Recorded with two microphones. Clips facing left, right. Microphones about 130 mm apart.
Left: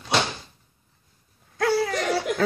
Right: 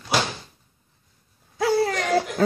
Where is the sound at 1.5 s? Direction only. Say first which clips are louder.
Right 2 dB; 15° right (ahead or behind).